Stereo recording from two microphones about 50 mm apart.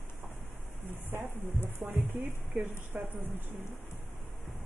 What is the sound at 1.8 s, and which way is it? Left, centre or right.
Speech, right.